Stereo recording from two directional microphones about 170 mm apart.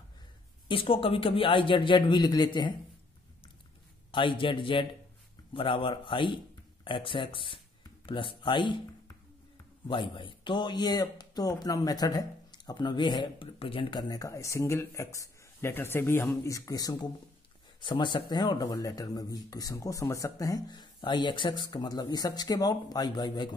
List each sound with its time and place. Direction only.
0.7 s speech: 30° left (ahead or behind)
4.1 s a man's voice: 30° left (ahead or behind)
9.8 s speech: 30° left (ahead or behind)